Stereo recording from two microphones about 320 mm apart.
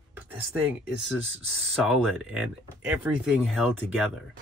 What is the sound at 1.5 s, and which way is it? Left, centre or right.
Speech, centre.